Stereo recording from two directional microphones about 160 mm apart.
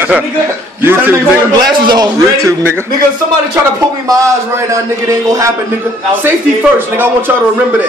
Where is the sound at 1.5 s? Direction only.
25° right (ahead or behind).